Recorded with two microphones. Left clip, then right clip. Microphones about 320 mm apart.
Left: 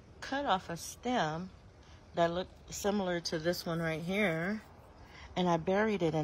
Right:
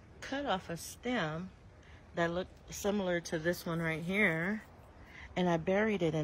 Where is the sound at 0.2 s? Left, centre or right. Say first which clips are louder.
Left 3 dB; centre.